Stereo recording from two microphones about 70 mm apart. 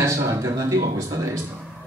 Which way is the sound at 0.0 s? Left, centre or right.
Right.